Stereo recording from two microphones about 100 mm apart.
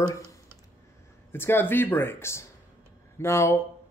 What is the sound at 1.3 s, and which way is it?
Speech, 20° left (ahead or behind).